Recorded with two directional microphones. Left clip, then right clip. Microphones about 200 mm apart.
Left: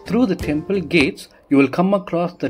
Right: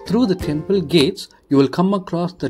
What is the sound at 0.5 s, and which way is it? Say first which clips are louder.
Speech: right 2 dB; 35° right (ahead or behind).